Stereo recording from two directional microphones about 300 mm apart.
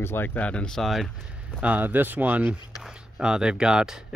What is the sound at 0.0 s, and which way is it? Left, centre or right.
Speech, centre.